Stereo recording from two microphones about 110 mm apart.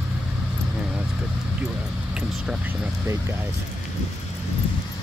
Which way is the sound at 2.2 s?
10° right (ahead or behind).